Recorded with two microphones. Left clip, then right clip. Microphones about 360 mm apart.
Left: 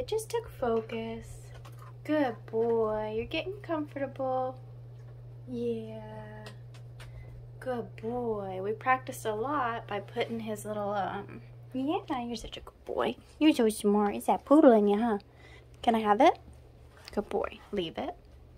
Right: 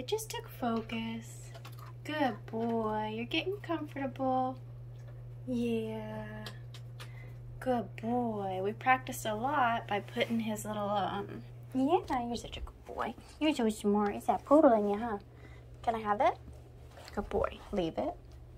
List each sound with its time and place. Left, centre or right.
0.0 s a woman's voice: centre
5.5 s speech: centre
7.5 s a woman's voice: centre